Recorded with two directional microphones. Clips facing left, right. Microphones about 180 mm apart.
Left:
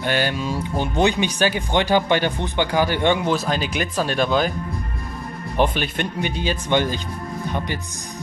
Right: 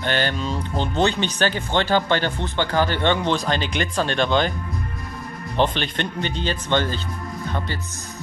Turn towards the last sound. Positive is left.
turn(degrees=15)  # may be behind; listen again after turning